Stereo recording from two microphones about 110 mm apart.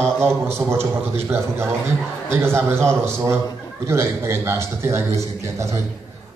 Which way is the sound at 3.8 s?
25° right (ahead or behind).